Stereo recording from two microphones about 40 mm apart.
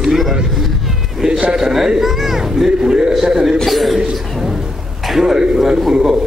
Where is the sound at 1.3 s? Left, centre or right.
Right.